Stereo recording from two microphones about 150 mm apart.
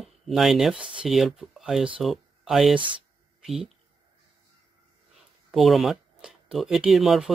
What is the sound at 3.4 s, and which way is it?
Speech, centre (ahead or behind).